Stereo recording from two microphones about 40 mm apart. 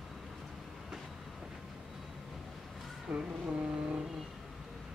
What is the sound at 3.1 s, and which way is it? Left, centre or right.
Vehicle, right.